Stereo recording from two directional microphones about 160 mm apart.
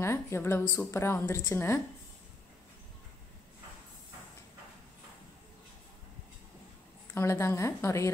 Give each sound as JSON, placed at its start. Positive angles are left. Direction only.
{"t": 0.0, "sound": "speech", "side_deg": 15}
{"t": 7.2, "sound": "speech", "side_deg": 15}